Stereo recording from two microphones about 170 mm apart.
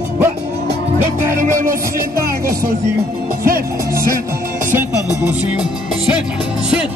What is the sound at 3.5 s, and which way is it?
Music, 60° right (ahead or behind).